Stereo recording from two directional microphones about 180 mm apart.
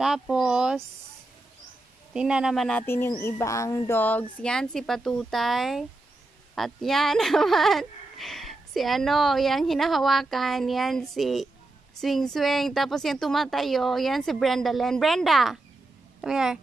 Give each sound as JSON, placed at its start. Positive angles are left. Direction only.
{"t": 0.0, "sound": "speech", "side_deg": -5}
{"t": 2.1, "sound": "speech", "side_deg": -5}
{"t": 3.1, "sound": "speech", "side_deg": 15}